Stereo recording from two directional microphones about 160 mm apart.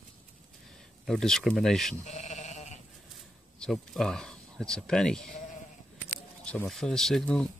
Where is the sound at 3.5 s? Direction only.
5° left (ahead or behind).